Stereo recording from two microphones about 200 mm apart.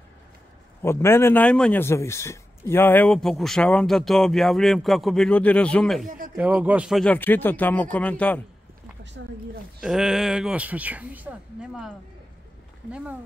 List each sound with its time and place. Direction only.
0.8 s a man's voice: 10° left (ahead or behind)
6.0 s speech: 45° right (ahead or behind)
6.3 s speech: 5° right (ahead or behind)
9.2 s speech: 65° right (ahead or behind)
9.8 s a man's voice: 5° right (ahead or behind)